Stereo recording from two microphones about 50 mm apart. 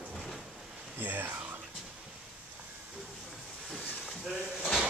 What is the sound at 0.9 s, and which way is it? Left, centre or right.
Speech, right.